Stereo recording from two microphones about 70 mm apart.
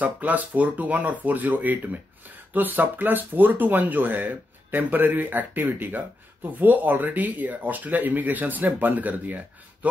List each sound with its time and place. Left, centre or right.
0.0 s speech: right